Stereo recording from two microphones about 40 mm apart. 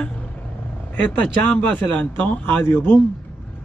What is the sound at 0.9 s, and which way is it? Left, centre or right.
A man's voice, left.